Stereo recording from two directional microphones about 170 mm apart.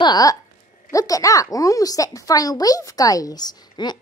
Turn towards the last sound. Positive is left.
turn(degrees=25)  # may be behind; listen again after turning